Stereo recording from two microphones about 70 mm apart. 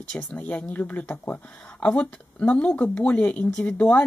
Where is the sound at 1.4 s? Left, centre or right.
Centre.